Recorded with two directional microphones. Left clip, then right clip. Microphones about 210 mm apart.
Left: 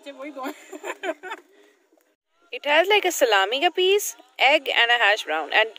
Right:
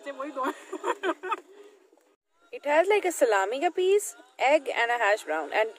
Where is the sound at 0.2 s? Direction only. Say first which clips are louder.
Right 2 dB; 10° left (ahead or behind).